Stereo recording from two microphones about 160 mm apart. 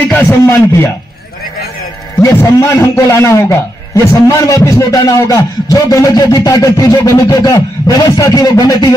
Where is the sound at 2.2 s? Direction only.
20° left (ahead or behind).